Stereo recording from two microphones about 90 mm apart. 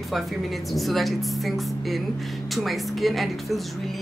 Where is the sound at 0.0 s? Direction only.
Centre (ahead or behind).